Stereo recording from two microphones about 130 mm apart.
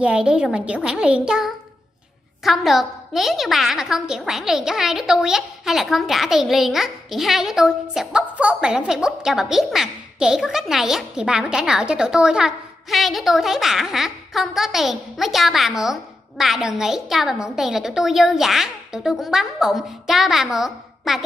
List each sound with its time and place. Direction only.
0.0 s a child's voice: 10° right (ahead or behind)